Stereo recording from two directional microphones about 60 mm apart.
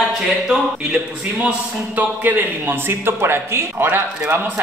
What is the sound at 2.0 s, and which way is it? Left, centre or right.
A man's voice, right.